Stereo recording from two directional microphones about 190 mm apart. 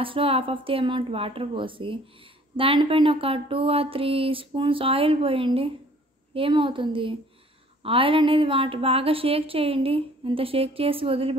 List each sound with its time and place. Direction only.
0.0 s a woman's voice: 30° right (ahead or behind)